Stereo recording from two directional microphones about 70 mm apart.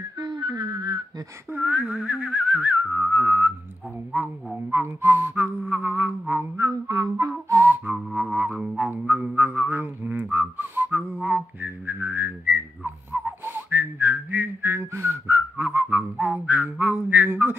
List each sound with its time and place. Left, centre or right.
0.2 s whistling: right
1.5 s speech: right
4.1 s music: right
6.5 s whistling: right
7.5 s whistle: right
8.1 s didgeridoo: centre
8.7 s music: right
9.5 s whistling: right